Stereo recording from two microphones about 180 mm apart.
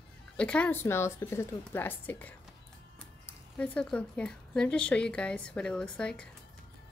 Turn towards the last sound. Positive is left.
turn(degrees=5)  # may be behind; listen again after turning